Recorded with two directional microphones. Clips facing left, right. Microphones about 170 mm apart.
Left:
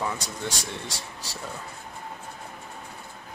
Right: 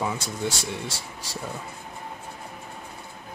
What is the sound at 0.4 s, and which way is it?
Speech, 15° right (ahead or behind).